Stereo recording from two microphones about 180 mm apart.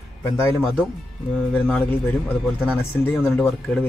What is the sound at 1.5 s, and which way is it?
Speech, 5° left (ahead or behind).